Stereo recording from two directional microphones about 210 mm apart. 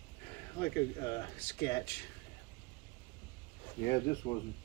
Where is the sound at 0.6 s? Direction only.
15° left (ahead or behind).